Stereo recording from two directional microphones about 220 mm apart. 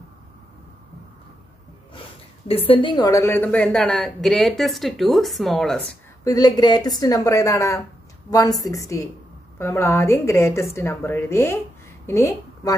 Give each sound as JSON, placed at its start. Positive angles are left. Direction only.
{"t": 2.0, "sound": "speech", "side_deg": 25}
{"t": 6.2, "sound": "a woman's voice", "side_deg": 15}